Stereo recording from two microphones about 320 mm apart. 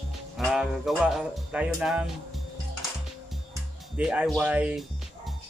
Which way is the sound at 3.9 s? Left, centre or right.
Centre.